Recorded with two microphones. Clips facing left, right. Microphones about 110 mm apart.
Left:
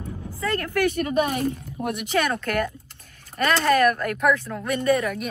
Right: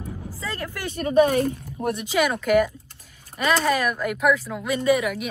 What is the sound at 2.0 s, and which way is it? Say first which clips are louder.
Speech: right 3 dB; 10° right (ahead or behind).